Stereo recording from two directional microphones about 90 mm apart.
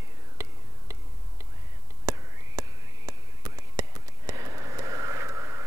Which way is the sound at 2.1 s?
40° right (ahead or behind).